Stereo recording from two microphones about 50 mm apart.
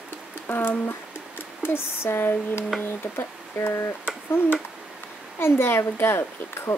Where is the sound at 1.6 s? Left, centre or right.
Left.